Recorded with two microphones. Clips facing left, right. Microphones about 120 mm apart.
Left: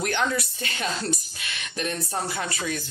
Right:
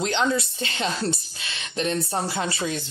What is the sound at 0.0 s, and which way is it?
Speech, 20° right (ahead or behind).